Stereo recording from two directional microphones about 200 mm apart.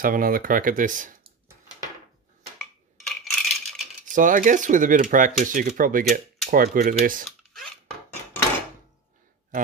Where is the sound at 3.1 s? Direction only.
Centre (ahead or behind).